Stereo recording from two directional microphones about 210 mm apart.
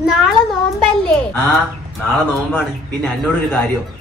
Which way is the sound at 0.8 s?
5° left (ahead or behind).